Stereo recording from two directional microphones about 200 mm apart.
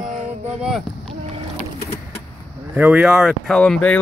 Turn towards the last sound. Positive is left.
turn(degrees=5)  # may be behind; listen again after turning